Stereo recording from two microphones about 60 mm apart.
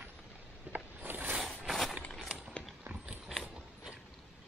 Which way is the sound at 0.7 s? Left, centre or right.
Right.